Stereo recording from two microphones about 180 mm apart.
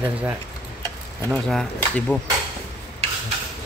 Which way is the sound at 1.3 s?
Centre (ahead or behind).